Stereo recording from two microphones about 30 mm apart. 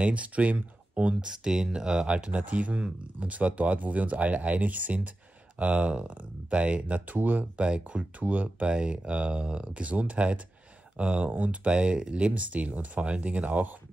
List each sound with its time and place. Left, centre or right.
0.0 s speech: right
1.2 s speech: right
2.0 s speech: right
7.5 s speech: right
8.2 s speech: right
8.6 s speech: right
9.8 s speech: right
11.2 s speech: right
11.6 s speech: right